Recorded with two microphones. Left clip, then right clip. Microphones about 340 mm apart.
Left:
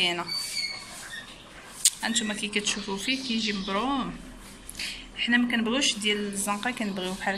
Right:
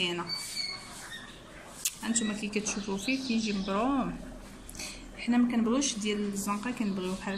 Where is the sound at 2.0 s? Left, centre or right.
Centre.